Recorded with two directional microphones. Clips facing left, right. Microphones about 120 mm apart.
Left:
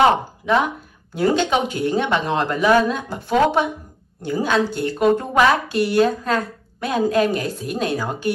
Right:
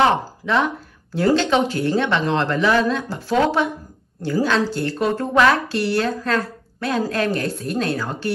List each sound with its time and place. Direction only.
0.0 s a woman's voice: 15° left (ahead or behind)